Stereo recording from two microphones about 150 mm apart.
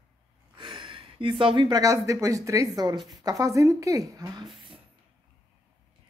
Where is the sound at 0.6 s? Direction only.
35° right (ahead or behind).